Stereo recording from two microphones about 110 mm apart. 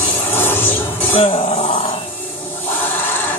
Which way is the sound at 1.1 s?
65° left (ahead or behind).